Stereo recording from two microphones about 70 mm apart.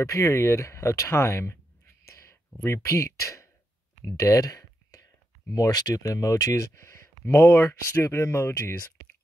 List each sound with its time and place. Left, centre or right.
0.1 s speech: left
2.0 s a sound: left
2.6 s speech: left
4.0 s clicking: left
5.5 s speech: left